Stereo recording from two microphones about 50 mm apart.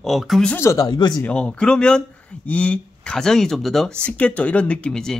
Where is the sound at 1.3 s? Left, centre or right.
Left.